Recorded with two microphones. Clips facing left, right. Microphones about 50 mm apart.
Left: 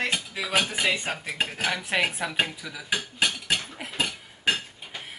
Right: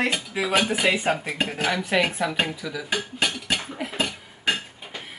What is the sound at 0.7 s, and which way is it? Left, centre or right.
Dishes, centre.